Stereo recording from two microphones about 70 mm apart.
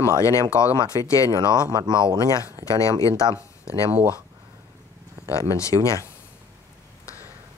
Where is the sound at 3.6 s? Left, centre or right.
Right.